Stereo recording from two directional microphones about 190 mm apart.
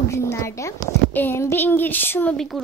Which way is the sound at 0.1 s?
15° left (ahead or behind).